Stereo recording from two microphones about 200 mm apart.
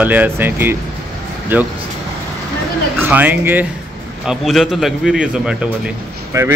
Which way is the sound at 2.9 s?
10° right (ahead or behind).